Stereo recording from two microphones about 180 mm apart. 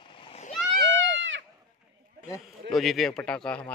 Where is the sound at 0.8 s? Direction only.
90° right.